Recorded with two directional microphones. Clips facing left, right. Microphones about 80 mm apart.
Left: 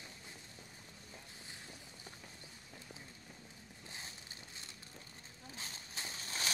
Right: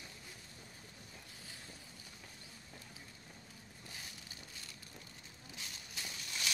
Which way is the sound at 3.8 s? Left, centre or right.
Left.